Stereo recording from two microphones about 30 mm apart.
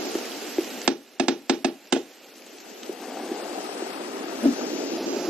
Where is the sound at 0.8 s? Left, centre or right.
Right.